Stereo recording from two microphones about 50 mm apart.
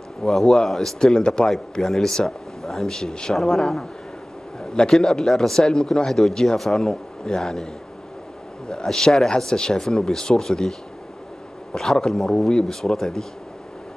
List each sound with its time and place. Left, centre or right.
0.2 s a man's voice: centre
0.9 s a man's voice: centre
1.5 s a man's voice: centre
5.6 s a man's voice: centre